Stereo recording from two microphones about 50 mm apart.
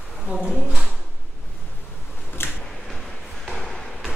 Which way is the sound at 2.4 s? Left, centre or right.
Left.